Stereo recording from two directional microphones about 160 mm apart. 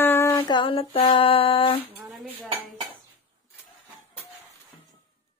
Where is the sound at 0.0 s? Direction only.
15° left (ahead or behind).